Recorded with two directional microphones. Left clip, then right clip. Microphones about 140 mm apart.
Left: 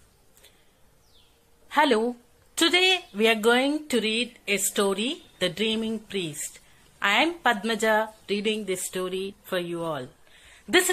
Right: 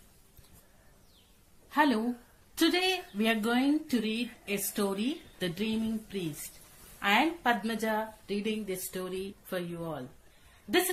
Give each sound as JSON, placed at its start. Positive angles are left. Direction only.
{"t": 1.7, "sound": "a woman's voice", "side_deg": 35}
{"t": 9.7, "sound": "speech", "side_deg": 30}